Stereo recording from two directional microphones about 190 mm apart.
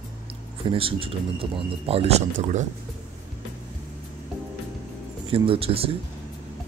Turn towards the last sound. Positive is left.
turn(degrees=-30)  # may be behind; listen again after turning